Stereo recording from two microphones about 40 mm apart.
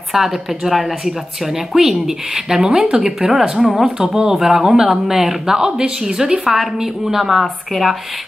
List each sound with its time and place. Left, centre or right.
0.1 s a woman's voice: centre
6.4 s a woman's voice: centre